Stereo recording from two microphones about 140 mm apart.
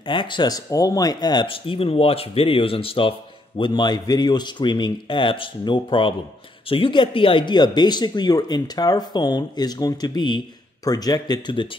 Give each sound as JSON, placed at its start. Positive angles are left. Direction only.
{"t": 0.0, "sound": "speech", "side_deg": 35}